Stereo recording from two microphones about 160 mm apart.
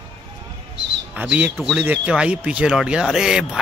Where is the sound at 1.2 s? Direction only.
10° right (ahead or behind).